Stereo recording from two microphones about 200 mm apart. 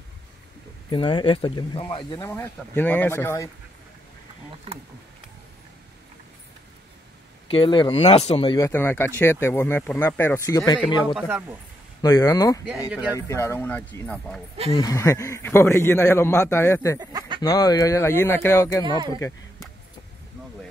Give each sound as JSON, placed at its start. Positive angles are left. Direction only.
{"t": 0.8, "sound": "speech", "side_deg": 25}
{"t": 7.4, "sound": "speech", "side_deg": 25}
{"t": 8.5, "sound": "speech", "side_deg": 15}
{"t": 11.1, "sound": "speech", "side_deg": -5}
{"t": 12.0, "sound": "speech", "side_deg": 15}
{"t": 17.0, "sound": "chicken", "side_deg": -20}
{"t": 17.4, "sound": "speech", "side_deg": 20}
{"t": 18.9, "sound": "speech", "side_deg": -20}